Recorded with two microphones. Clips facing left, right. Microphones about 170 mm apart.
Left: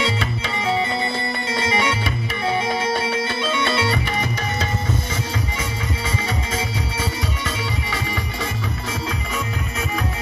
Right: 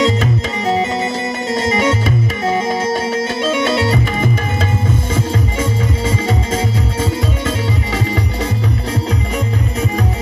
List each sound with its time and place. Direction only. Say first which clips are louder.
0.0 s music: right 8 dB; 40° right (ahead or behind)